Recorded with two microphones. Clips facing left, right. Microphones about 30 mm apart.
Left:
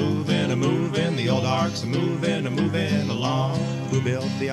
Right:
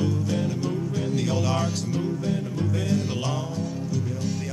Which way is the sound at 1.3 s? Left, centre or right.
Left.